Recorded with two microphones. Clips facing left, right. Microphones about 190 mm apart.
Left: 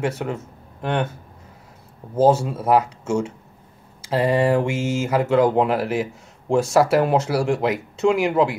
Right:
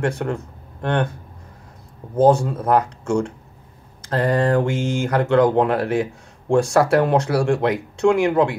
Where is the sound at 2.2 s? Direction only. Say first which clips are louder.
Right 2 dB; 5° left (ahead or behind).